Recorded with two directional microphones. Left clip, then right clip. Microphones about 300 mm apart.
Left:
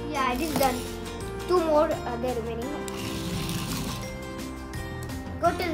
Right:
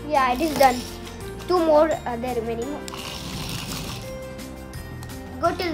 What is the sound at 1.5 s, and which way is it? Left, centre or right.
Speech, right.